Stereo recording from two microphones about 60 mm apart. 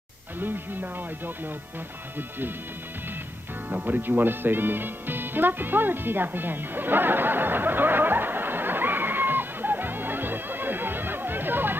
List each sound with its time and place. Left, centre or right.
0.4 s speech: right
3.7 s music: right